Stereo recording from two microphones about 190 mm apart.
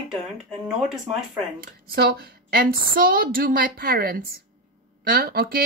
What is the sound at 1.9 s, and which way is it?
A woman's voice, 55° right (ahead or behind).